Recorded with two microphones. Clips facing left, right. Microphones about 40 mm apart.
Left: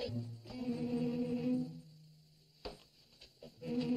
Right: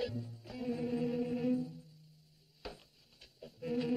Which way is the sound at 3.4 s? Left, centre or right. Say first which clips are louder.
Right 2 dB; centre.